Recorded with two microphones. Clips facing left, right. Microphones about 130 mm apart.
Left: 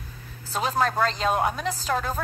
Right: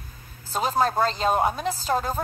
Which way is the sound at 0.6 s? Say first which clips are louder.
Right 1 dB; 40° right (ahead or behind).